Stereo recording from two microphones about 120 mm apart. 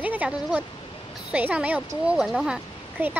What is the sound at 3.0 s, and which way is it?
Speech, 15° right (ahead or behind).